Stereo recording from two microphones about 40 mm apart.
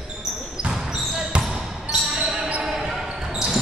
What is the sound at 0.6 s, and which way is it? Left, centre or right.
Basketball bounce, centre.